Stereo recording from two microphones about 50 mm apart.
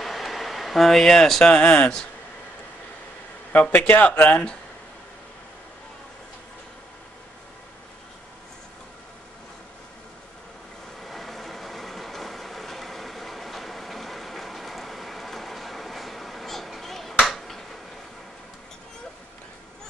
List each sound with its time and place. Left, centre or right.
0.0 s speech: centre
3.5 s speech: left
11.0 s vehicle: centre
17.1 s a sound: centre
17.5 s finger snapping: centre